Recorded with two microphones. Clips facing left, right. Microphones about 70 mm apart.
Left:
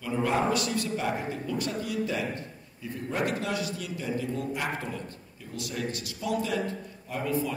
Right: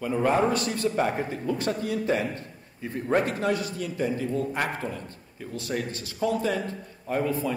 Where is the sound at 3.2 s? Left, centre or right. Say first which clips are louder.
Right 3 dB; right.